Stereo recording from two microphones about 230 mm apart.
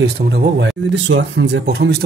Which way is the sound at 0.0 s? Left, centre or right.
Right.